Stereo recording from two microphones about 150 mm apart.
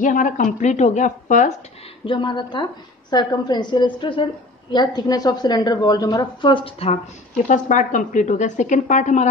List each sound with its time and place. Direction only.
0.0 s a woman's voice: 60° left (ahead or behind)
2.0 s a woman's voice: 30° left (ahead or behind)
7.4 s a woman's voice: 60° left (ahead or behind)